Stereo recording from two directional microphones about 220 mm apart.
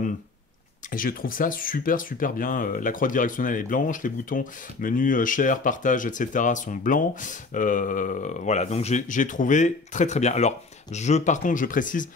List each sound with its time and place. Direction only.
0.8 s speech: 40° left (ahead or behind)